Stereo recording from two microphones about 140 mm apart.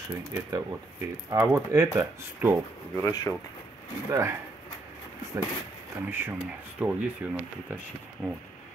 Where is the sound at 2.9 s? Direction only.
20° left (ahead or behind).